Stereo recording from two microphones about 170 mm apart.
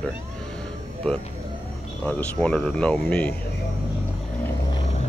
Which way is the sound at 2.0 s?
10° left (ahead or behind).